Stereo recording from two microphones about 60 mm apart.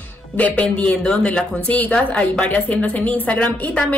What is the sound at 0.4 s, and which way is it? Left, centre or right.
Speech, left.